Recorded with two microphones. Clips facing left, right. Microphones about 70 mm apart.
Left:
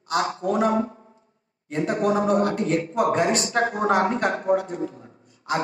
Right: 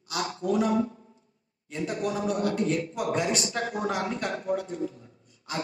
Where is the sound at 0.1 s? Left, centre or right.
Left.